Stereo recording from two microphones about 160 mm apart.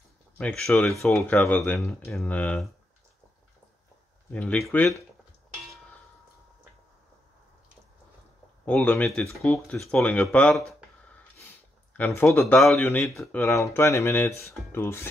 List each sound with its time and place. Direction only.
0.4 s speech: 5° left (ahead or behind)
4.3 s speech: 10° left (ahead or behind)
8.6 s speech: 5° left (ahead or behind)
11.9 s speech: 10° left (ahead or behind)
13.4 s speech: 15° left (ahead or behind)